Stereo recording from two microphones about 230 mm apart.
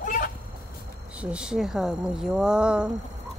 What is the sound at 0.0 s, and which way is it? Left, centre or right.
Chicken, left.